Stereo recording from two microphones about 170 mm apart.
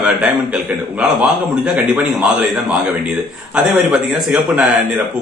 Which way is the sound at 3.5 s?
5° right (ahead or behind).